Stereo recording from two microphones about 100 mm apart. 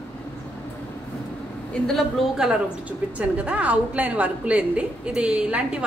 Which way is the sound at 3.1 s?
15° right (ahead or behind).